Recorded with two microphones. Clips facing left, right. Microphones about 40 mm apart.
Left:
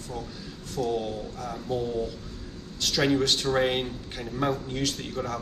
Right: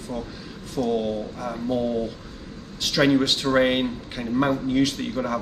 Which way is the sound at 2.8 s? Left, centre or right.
Centre.